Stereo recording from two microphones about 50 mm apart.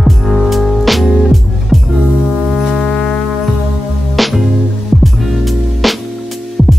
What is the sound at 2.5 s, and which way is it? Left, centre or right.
Music, centre.